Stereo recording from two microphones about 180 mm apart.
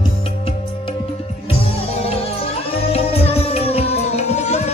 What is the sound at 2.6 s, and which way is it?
Music, 35° left (ahead or behind).